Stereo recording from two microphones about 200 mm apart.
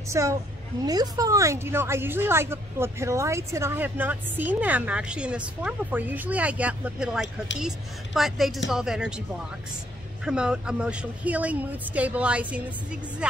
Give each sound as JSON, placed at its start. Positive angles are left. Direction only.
{"t": 0.1, "sound": "a woman's voice", "side_deg": -15}
{"t": 10.2, "sound": "a woman's voice", "side_deg": -5}